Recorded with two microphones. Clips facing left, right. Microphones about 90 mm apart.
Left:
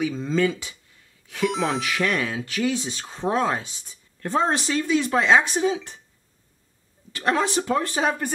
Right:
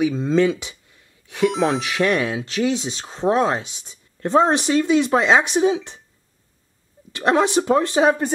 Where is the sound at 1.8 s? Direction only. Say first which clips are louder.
Right 4 dB; 20° right (ahead or behind).